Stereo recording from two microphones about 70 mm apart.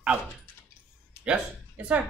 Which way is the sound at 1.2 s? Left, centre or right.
Centre.